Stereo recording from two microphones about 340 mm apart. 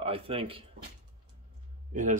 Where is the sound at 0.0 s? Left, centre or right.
Centre.